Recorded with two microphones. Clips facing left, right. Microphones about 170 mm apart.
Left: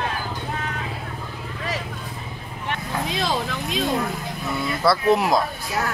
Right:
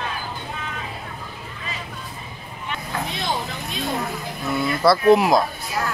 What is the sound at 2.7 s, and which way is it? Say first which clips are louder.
Vehicle: left 2 dB; 90° left.